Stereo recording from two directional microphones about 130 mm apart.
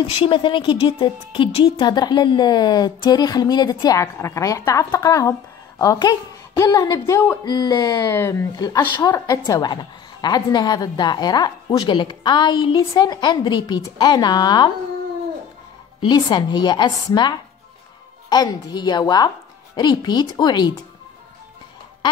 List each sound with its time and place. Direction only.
0.1 s speech: 45° left (ahead or behind)
16.0 s speech: 35° left (ahead or behind)